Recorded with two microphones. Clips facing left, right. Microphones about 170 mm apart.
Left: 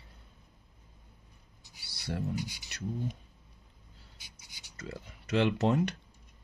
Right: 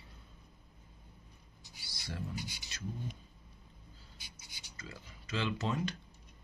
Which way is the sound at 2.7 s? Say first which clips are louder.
Left 5 dB; 70° left (ahead or behind).